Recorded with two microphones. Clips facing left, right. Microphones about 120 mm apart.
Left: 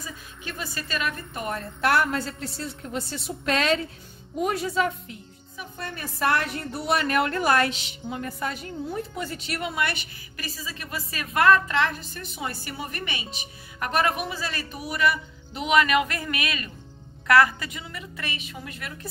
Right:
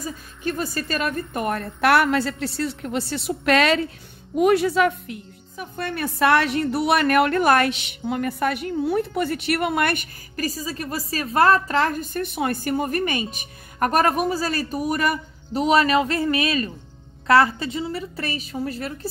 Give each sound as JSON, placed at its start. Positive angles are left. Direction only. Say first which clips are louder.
{"t": 0.0, "sound": "a woman's voice", "louder": "right 10 dB", "side_deg": -45}